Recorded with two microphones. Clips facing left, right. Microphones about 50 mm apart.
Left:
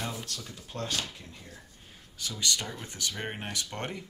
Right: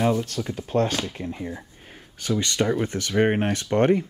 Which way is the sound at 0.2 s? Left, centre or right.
Right.